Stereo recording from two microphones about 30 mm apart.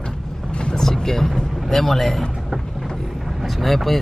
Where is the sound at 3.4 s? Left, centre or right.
Centre.